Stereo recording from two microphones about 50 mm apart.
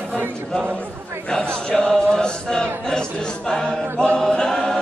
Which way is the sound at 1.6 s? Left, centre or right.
Centre.